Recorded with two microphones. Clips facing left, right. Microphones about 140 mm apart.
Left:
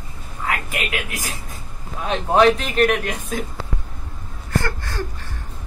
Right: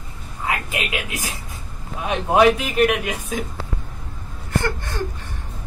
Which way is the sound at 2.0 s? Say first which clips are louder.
Even; 10° right (ahead or behind).